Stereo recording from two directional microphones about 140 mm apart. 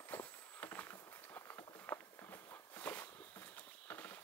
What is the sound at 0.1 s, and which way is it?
Walk, 15° left (ahead or behind).